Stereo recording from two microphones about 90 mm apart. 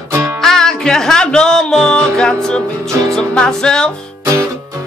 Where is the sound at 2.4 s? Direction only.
5° left (ahead or behind).